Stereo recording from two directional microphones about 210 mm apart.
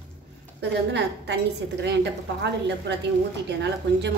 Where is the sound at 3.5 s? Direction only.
55° right (ahead or behind).